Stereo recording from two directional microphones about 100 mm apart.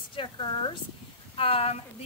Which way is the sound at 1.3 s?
70° left (ahead or behind).